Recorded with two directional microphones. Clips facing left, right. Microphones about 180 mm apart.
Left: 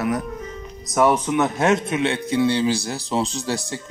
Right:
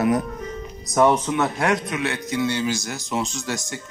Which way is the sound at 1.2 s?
20° left (ahead or behind).